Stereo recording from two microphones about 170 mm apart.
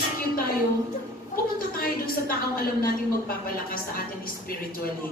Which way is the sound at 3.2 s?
60° left (ahead or behind).